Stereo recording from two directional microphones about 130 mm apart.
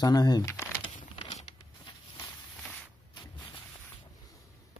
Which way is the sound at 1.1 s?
55° left (ahead or behind).